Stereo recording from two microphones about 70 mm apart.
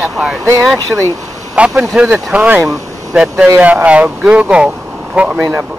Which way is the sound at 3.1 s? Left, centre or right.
Centre.